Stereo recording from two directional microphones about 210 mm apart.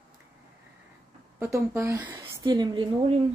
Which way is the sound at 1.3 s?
10° right (ahead or behind).